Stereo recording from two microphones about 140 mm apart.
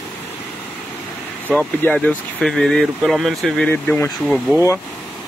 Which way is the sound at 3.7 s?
15° left (ahead or behind).